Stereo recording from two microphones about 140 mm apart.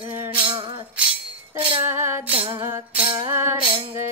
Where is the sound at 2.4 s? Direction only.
40° right (ahead or behind).